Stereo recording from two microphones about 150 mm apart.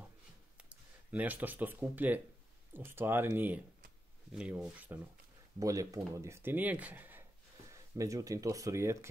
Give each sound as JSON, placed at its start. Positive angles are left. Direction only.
{"t": 0.6, "sound": "speech", "side_deg": -10}
{"t": 5.6, "sound": "speech", "side_deg": -20}